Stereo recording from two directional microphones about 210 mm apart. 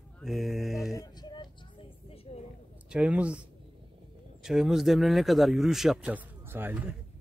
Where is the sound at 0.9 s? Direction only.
20° left (ahead or behind).